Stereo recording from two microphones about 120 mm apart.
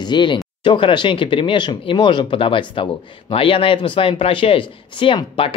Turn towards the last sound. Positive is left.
turn(degrees=50)  # may be behind; listen again after turning